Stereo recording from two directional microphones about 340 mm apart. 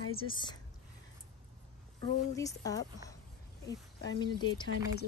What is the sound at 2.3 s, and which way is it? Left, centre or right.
Speech, centre.